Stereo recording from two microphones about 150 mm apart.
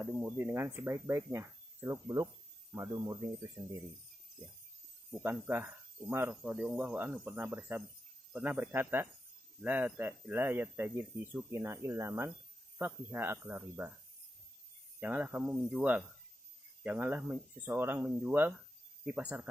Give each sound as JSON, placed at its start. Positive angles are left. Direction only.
{"t": 0.0, "sound": "speech", "side_deg": -15}
{"t": 5.1, "sound": "speech", "side_deg": -10}
{"t": 15.0, "sound": "speech", "side_deg": -10}